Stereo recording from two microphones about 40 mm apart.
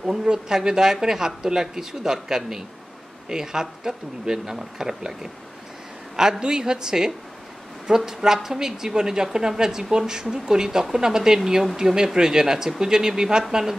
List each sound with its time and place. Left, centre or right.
0.0 s a woman's voice: centre
6.4 s a woman's voice: centre